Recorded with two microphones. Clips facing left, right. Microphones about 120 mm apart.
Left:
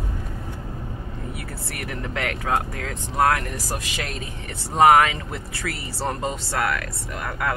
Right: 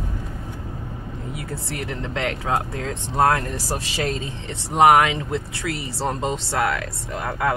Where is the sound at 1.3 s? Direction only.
20° right (ahead or behind).